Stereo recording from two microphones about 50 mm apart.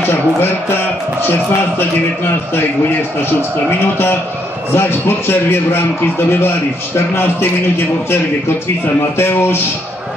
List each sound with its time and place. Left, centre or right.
0.0 s a man's voice: left
3.8 s a man's voice: left